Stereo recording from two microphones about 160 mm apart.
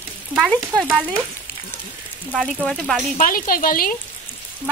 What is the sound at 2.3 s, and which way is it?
Speech, centre (ahead or behind).